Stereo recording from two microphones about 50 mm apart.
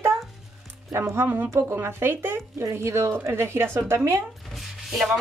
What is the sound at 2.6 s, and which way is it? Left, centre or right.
Speech, right.